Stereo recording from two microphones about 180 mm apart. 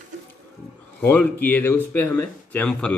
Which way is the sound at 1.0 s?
10° left (ahead or behind).